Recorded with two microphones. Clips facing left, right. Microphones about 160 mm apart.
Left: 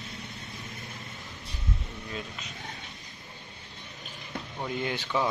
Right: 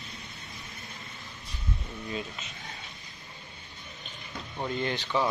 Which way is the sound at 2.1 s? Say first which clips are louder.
Right 3 dB; centre (ahead or behind).